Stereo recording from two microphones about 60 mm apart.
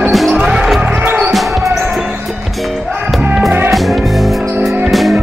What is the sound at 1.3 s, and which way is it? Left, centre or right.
Basketball bounce, centre.